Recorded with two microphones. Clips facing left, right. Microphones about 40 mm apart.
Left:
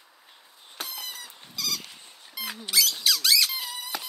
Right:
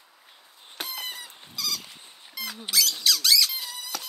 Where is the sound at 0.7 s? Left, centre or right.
Right.